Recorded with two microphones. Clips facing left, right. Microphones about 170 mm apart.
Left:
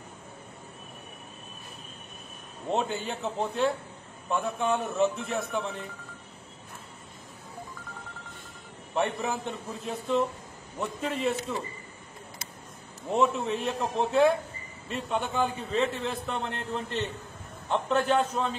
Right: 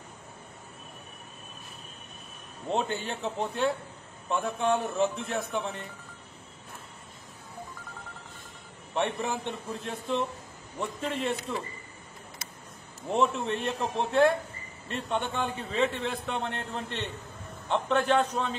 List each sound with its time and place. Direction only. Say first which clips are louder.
2.7 s a man's voice: left 1 dB; centre (ahead or behind)
8.9 s a man's voice: left 1 dB; centre (ahead or behind)
13.1 s a man's voice: left 1 dB; centre (ahead or behind)